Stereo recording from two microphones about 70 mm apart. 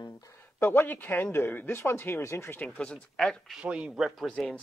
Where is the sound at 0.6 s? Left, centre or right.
Left.